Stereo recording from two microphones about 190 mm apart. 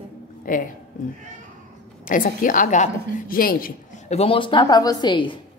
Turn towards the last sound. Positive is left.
turn(degrees=25)  # may be behind; listen again after turning